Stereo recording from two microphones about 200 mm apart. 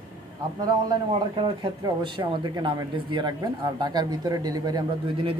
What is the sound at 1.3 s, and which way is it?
Speech, 25° right (ahead or behind).